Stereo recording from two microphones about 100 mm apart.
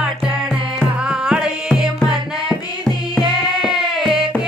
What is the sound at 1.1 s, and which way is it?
Music, 5° right (ahead or behind).